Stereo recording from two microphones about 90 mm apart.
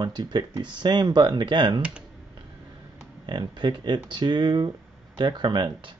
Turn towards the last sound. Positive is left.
turn(degrees=-65)  # may be behind; listen again after turning